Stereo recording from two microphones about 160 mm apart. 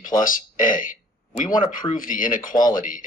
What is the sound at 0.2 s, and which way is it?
Speech, 55° left (ahead or behind).